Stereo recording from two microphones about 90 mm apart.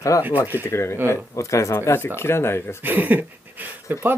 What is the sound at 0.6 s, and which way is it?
Speech, 30° left (ahead or behind).